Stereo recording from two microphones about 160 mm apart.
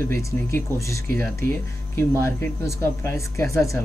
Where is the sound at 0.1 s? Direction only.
15° left (ahead or behind).